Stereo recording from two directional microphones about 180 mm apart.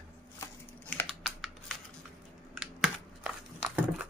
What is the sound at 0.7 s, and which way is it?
Typing, 10° left (ahead or behind).